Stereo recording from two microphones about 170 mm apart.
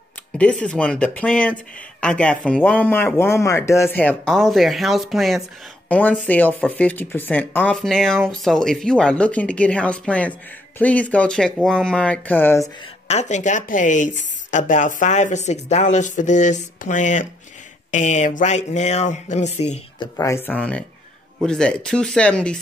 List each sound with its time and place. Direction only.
0.4 s speech: 5° left (ahead or behind)
13.1 s speech: 45° left (ahead or behind)
20.2 s speech: 15° left (ahead or behind)